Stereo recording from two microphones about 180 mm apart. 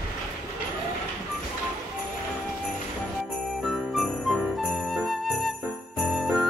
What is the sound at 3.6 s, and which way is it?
Jingle bell, centre (ahead or behind).